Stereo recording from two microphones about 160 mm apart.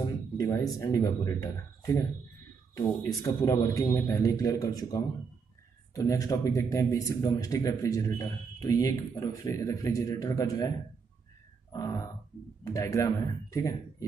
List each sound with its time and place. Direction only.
0.4 s a man's voice: 20° left (ahead or behind)
3.2 s a man's voice: 20° left (ahead or behind)
11.7 s a sound: 20° left (ahead or behind)
12.6 s a man's voice: 20° left (ahead or behind)